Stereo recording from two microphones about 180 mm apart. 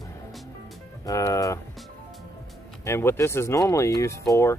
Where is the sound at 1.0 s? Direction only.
20° left (ahead or behind).